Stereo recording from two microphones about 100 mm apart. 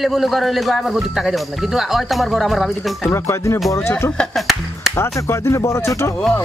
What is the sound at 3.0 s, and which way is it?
Speech, 25° left (ahead or behind).